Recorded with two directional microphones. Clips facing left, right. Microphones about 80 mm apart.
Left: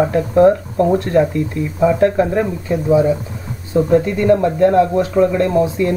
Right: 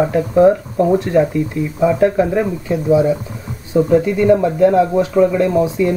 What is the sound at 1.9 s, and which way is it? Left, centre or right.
Speech, centre.